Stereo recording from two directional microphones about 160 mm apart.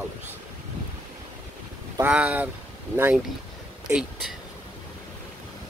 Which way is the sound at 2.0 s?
10° right (ahead or behind).